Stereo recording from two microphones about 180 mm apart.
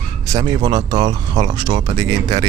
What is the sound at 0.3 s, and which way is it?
Speech, 25° right (ahead or behind).